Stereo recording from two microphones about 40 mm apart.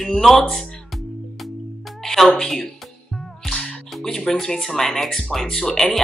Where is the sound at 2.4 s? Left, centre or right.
Centre.